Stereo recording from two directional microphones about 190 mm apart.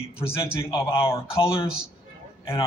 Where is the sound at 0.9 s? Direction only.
15° left (ahead or behind).